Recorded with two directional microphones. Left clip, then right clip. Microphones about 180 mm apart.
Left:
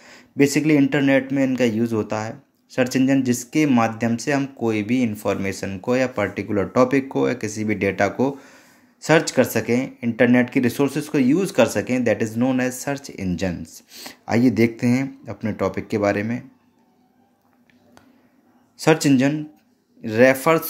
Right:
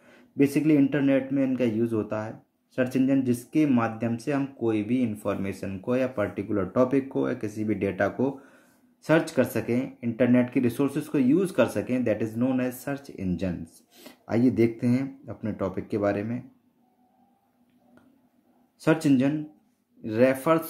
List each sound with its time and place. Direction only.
0.0 s a man's voice: 15° left (ahead or behind)
18.8 s a man's voice: 15° left (ahead or behind)